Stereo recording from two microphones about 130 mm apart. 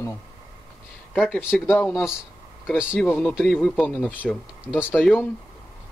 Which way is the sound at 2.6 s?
5° right (ahead or behind).